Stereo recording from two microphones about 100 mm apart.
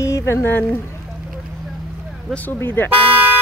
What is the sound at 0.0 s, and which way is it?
Speech, 30° left (ahead or behind).